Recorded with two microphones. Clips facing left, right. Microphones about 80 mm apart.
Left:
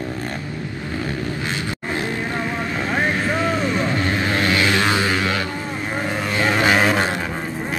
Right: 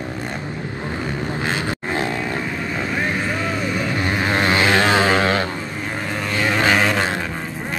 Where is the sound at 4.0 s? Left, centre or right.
Right.